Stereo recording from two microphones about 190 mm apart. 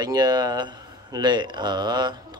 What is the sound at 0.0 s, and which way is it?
Speech, 20° right (ahead or behind).